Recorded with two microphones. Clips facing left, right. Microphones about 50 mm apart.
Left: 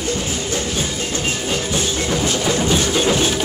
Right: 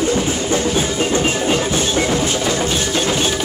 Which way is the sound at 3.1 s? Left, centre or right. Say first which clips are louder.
Even; centre.